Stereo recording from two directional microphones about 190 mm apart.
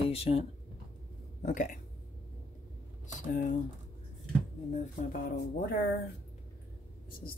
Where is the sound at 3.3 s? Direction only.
40° left (ahead or behind).